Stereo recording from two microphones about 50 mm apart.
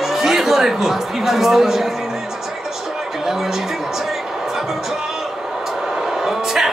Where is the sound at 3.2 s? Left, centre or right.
Centre.